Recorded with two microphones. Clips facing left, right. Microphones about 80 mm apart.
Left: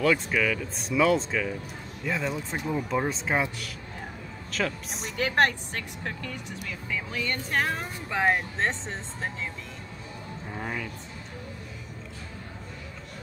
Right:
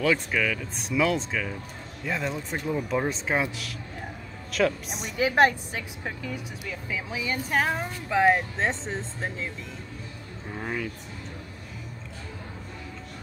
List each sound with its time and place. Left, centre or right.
0.0 s speech: centre
10.5 s speech: centre